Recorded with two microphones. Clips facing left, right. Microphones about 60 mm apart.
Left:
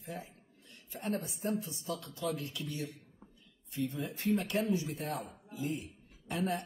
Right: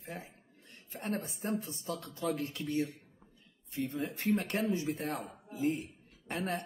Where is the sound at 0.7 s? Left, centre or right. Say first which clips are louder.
Left 1 dB; right.